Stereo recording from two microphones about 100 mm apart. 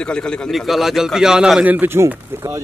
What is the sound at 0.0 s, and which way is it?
Speech, 10° left (ahead or behind).